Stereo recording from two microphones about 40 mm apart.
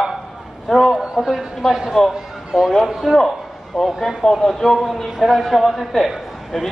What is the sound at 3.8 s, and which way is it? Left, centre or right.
A man's voice, centre.